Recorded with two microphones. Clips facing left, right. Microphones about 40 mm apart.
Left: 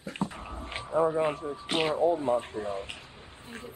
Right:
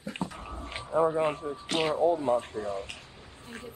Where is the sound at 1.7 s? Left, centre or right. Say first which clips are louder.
Even; centre.